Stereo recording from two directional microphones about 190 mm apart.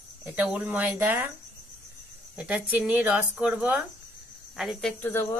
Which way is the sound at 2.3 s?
5° right (ahead or behind).